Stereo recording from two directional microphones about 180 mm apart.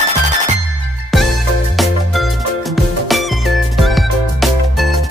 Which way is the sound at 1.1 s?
Centre (ahead or behind).